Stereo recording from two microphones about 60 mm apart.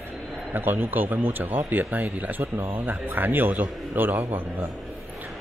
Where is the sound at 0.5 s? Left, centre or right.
Right.